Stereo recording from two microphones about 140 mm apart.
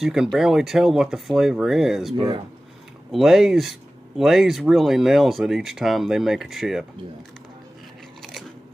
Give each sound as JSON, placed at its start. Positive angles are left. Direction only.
{"t": 0.0, "sound": "speech", "side_deg": -5}
{"t": 2.1, "sound": "speech", "side_deg": -40}
{"t": 3.1, "sound": "speech", "side_deg": 0}
{"t": 8.2, "sound": "biting", "side_deg": 0}